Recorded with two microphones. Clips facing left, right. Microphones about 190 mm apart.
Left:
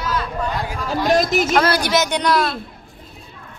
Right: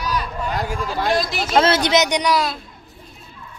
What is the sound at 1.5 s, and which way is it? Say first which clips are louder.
Speech: right 5 dB; 25° right (ahead or behind).